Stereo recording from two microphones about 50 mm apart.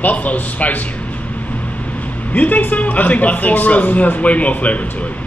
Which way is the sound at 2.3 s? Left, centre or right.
Left.